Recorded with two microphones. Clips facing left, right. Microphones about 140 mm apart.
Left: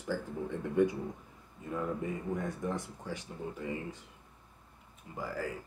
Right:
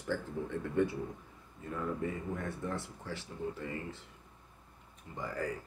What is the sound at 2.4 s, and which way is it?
Speech, 15° left (ahead or behind).